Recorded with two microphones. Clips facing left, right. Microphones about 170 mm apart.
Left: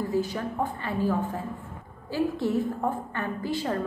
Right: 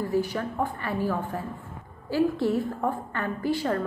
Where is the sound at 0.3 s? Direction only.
20° left (ahead or behind).